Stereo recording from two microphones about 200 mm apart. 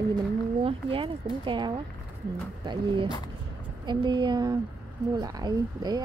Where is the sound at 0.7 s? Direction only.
25° right (ahead or behind).